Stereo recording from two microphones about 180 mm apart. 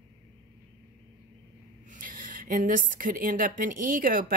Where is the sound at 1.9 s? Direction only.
45° right (ahead or behind).